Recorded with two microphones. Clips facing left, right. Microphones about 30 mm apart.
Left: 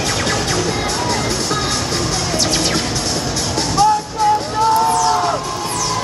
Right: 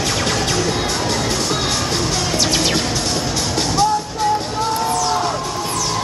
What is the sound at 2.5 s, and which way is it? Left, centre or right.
Music, centre.